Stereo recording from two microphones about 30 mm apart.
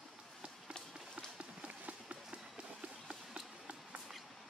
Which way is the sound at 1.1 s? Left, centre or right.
Right.